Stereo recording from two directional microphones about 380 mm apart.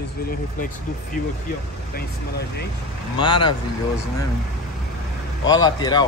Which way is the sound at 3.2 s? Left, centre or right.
Centre.